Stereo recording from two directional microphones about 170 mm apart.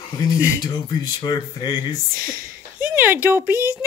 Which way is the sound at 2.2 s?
55° right (ahead or behind).